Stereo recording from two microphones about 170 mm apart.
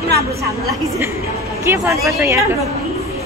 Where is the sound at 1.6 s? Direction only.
15° right (ahead or behind).